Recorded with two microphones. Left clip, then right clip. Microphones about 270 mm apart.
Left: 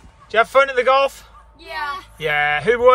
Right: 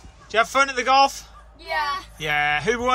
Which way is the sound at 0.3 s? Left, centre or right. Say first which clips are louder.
Left 5 dB; centre.